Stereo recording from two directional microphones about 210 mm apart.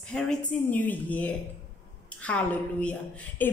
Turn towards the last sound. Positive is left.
turn(degrees=5)  # may be behind; listen again after turning